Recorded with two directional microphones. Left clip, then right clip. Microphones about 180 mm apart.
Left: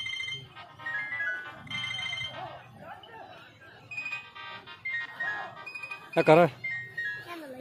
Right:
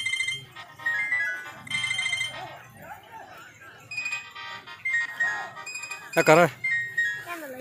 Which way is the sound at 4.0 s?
25° right (ahead or behind).